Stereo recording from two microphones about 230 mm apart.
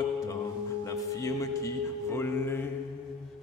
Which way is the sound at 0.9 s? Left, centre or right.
Centre.